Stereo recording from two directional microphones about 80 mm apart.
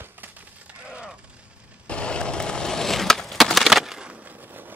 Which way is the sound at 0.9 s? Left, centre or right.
Centre.